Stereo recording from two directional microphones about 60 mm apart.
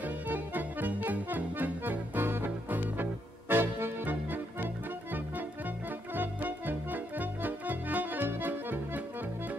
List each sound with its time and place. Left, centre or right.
0.0 s music: right
6.1 s music: right